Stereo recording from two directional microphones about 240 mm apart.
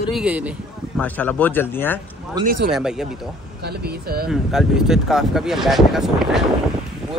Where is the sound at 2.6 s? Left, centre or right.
Centre.